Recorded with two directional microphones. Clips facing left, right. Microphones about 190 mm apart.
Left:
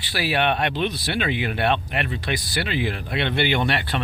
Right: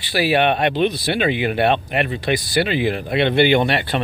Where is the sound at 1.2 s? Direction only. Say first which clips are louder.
Right 5 dB; 10° right (ahead or behind).